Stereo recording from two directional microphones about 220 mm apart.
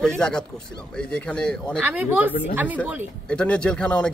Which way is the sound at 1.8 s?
10° right (ahead or behind).